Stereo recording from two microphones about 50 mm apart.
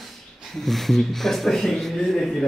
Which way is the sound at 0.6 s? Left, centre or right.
Centre.